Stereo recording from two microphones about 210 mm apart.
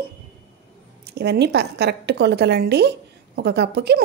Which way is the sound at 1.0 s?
50° right (ahead or behind).